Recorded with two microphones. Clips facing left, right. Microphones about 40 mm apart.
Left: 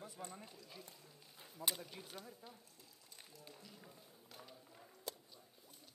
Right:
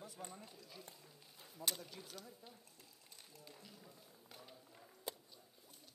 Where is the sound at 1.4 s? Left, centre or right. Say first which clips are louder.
Left 1 dB; centre.